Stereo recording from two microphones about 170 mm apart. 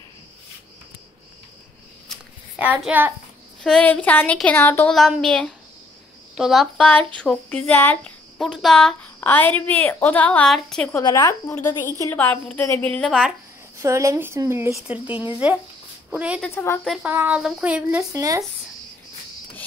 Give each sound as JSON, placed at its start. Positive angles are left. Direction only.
{"t": 2.6, "sound": "speech", "side_deg": -10}
{"t": 3.6, "sound": "speech", "side_deg": 5}
{"t": 4.9, "sound": "a woman's voice", "side_deg": 0}
{"t": 10.9, "sound": "speech", "side_deg": 20}
{"t": 13.7, "sound": "a woman's voice", "side_deg": -15}
{"t": 16.5, "sound": "speech", "side_deg": 15}
{"t": 16.8, "sound": "speech", "side_deg": -5}
{"t": 18.1, "sound": "speech", "side_deg": -20}